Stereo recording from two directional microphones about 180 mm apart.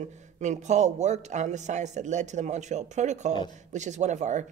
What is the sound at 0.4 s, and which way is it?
Speech, 40° right (ahead or behind).